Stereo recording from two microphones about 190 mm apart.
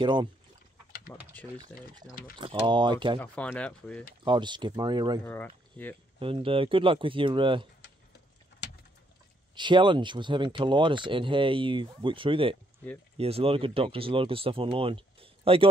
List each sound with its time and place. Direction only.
0.0 s speech: 25° right (ahead or behind)
1.1 s speech: 10° left (ahead or behind)
2.3 s speech: 25° right (ahead or behind)
3.2 s speech: 5° left (ahead or behind)
4.2 s speech: 25° right (ahead or behind)
5.2 s speech: 10° left (ahead or behind)
6.1 s speech: 30° right (ahead or behind)
9.6 s speech: 25° right (ahead or behind)